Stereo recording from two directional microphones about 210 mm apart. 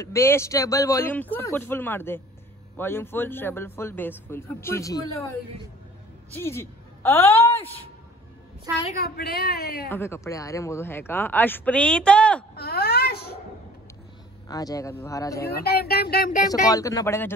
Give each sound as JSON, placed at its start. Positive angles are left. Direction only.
{"t": 0.0, "sound": "speech", "side_deg": 15}
{"t": 6.3, "sound": "a woman's voice", "side_deg": 10}
{"t": 9.0, "sound": "speech", "side_deg": 45}
{"t": 9.8, "sound": "speech", "side_deg": 10}
{"t": 12.5, "sound": "a sound", "side_deg": 50}
{"t": 14.5, "sound": "speech", "side_deg": 15}
{"t": 15.4, "sound": "speech", "side_deg": 50}
{"t": 16.4, "sound": "speech", "side_deg": 15}